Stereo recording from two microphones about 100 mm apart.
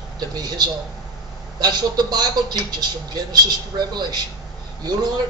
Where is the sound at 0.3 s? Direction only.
45° right (ahead or behind).